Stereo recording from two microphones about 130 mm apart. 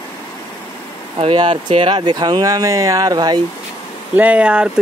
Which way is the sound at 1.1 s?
40° right (ahead or behind).